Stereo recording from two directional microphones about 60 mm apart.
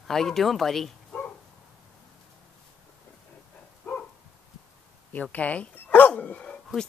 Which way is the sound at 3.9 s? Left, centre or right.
Left.